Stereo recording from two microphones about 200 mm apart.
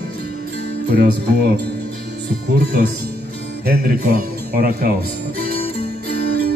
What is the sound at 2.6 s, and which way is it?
Speech, 55° right (ahead or behind).